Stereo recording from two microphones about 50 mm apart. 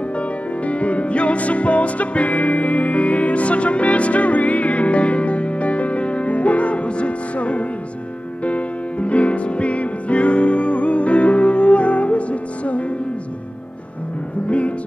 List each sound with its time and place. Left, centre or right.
0.7 s music: left